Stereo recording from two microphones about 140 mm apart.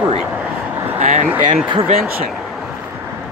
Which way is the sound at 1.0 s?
50° right (ahead or behind).